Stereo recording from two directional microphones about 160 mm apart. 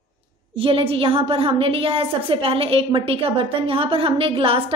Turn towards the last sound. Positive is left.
turn(degrees=-35)  # may be behind; listen again after turning